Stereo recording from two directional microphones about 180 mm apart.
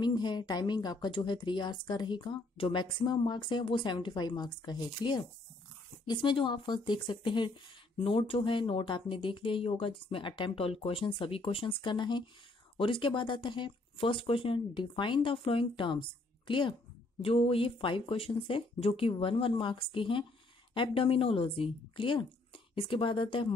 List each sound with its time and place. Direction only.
0.0 s a woman's voice: 25° left (ahead or behind)